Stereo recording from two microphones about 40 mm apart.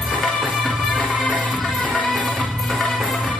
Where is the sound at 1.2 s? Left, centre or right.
Left.